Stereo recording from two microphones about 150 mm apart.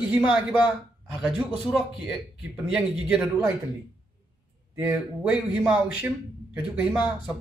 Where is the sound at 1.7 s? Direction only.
Centre (ahead or behind).